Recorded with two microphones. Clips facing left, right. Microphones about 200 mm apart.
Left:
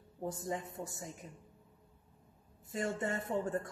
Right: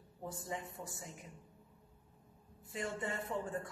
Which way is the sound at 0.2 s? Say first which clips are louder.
Left 5 dB; 40° left (ahead or behind).